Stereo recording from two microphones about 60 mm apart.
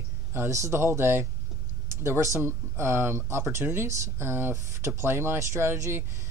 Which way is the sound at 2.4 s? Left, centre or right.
Right.